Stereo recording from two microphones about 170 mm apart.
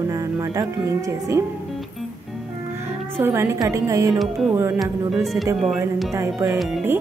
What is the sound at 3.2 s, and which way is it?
Speech, 15° right (ahead or behind).